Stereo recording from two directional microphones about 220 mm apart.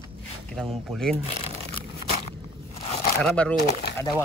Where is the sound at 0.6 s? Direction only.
Centre (ahead or behind).